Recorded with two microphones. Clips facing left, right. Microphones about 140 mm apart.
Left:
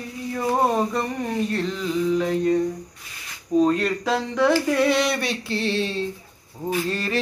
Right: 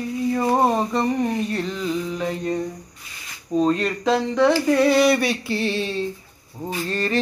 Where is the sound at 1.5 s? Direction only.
5° right (ahead or behind).